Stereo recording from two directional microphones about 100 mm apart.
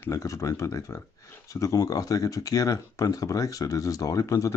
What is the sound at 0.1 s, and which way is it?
Speech, 30° left (ahead or behind).